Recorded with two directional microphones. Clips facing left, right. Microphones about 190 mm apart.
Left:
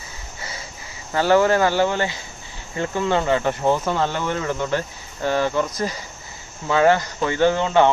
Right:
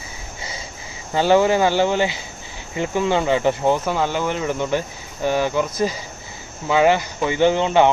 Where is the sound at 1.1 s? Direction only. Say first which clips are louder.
Right 1 dB; 15° right (ahead or behind).